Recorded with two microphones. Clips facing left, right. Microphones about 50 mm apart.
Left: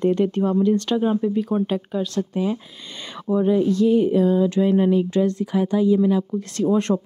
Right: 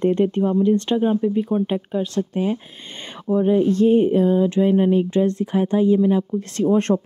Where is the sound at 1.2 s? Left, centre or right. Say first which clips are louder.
Right 1 dB; centre.